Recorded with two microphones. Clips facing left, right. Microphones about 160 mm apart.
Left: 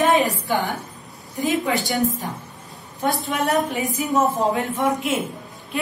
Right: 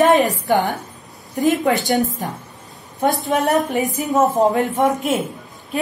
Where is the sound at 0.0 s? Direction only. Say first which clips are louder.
Right 4 dB; 45° right (ahead or behind).